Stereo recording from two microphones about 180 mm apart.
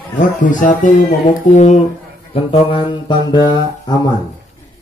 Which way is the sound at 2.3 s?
30° left (ahead or behind).